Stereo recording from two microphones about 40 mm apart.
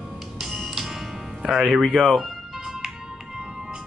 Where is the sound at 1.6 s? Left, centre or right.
Centre.